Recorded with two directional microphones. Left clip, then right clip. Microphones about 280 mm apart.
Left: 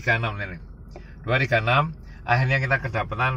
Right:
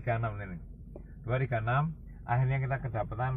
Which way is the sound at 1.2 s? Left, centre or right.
Left.